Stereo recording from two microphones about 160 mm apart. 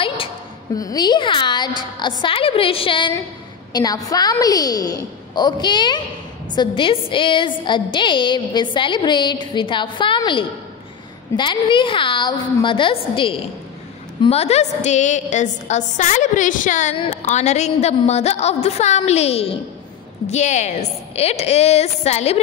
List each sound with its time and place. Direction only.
0.7 s a woman's voice: 25° left (ahead or behind)
3.7 s a woman's voice: 25° left (ahead or behind); by 16.9 s 50° left (ahead or behind)
16.9 s a woman's voice: 40° left (ahead or behind)